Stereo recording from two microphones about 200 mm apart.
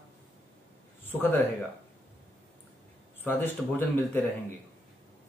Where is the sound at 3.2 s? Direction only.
10° left (ahead or behind).